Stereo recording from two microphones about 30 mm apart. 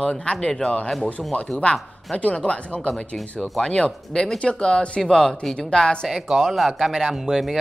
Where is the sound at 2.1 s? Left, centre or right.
Left.